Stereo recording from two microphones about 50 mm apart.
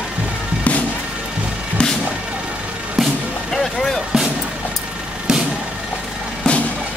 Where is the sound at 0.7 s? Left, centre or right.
Left.